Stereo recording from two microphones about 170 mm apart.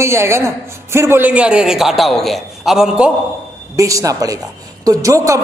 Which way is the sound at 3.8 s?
20° right (ahead or behind).